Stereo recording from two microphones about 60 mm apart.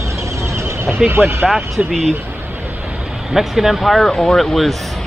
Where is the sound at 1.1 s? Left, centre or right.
Right.